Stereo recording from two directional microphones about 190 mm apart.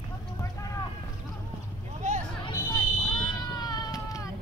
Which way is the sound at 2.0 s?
40° right (ahead or behind).